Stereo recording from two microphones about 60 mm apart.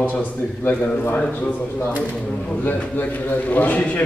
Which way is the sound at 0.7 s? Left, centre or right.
Left.